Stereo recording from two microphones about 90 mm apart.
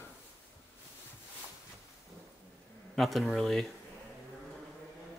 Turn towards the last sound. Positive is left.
turn(degrees=5)  # may be behind; listen again after turning